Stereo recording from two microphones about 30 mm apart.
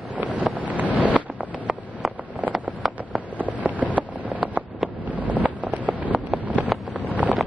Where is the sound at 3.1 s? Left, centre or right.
Right.